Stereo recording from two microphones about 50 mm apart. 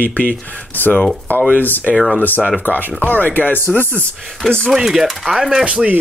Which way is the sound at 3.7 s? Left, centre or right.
Centre.